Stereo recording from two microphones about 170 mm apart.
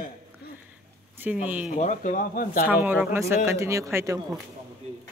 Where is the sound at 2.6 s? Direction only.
10° right (ahead or behind).